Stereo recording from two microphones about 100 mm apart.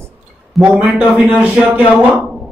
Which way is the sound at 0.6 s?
10° right (ahead or behind).